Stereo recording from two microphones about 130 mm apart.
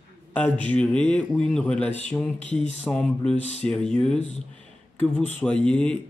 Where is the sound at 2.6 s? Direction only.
55° left (ahead or behind).